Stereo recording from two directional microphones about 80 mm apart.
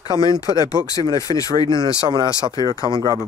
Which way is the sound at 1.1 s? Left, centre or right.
Left.